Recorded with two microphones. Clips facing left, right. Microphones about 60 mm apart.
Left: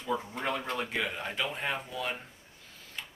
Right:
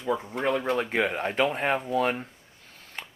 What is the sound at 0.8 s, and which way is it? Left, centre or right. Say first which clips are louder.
Speech: right 7 dB; right.